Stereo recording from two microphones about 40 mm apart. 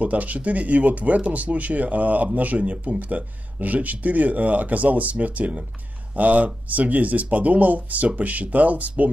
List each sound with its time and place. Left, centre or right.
0.0 s speech: right